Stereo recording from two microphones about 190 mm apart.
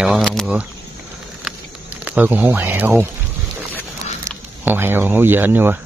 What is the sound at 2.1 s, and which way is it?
Speech, 10° right (ahead or behind).